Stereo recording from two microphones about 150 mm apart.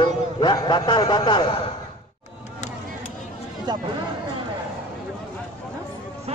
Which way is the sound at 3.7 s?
30° right (ahead or behind).